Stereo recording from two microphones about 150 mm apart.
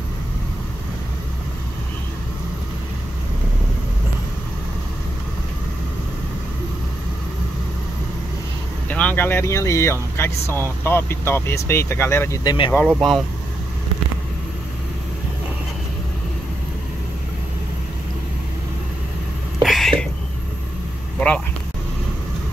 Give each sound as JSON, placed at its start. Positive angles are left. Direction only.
{"t": 8.8, "sound": "speech", "side_deg": 10}
{"t": 12.7, "sound": "speech", "side_deg": 5}
{"t": 19.6, "sound": "a sound", "side_deg": 0}